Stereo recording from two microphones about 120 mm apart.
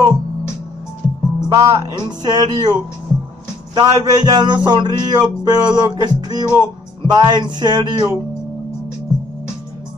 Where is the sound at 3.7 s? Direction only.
35° right (ahead or behind).